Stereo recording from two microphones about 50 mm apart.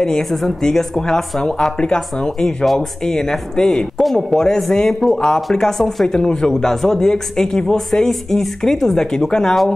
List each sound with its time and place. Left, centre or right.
0.0 s speech: centre
2.4 s speech: centre
3.1 s speech: centre